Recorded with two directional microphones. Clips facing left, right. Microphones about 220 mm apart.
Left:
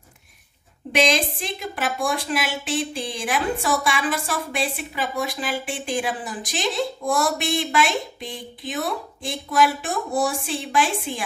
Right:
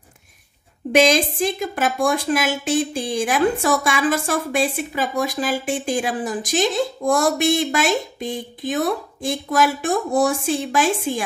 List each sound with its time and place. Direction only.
0.9 s a woman's voice: 45° right (ahead or behind)